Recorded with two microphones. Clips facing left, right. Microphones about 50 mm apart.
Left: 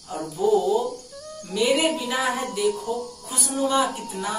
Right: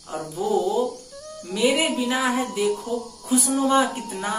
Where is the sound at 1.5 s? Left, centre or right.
Centre.